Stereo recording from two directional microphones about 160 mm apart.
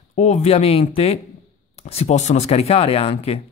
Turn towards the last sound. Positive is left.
turn(degrees=40)  # may be behind; listen again after turning